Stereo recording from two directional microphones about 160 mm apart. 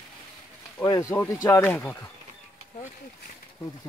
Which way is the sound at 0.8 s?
20° left (ahead or behind).